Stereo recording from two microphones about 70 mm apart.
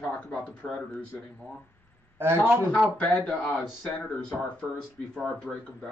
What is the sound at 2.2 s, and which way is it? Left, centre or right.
Speech, right.